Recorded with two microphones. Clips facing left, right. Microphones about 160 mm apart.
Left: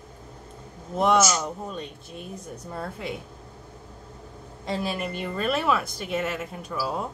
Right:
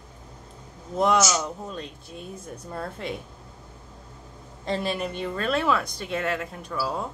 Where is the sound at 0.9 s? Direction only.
Centre (ahead or behind).